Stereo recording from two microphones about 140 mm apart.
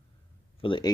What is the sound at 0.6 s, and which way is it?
Speech, 35° left (ahead or behind).